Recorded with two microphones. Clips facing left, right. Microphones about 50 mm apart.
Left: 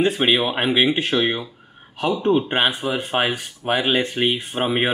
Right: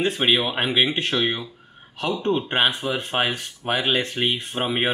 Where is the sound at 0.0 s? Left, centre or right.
Centre.